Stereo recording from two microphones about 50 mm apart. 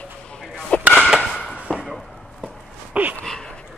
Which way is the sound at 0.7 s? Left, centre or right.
Left.